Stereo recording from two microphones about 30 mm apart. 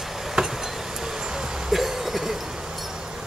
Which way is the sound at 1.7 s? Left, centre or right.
Centre.